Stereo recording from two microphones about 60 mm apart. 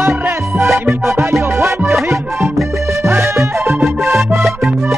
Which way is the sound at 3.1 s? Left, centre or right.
Right.